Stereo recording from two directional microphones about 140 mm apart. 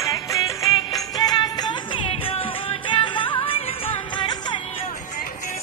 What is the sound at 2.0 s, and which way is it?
Music, 40° left (ahead or behind).